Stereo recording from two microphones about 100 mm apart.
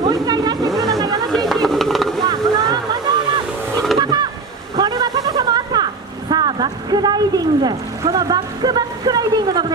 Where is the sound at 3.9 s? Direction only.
45° right (ahead or behind).